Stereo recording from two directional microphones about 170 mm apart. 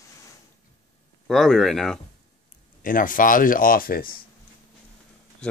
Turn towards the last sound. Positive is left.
turn(degrees=60)  # may be behind; listen again after turning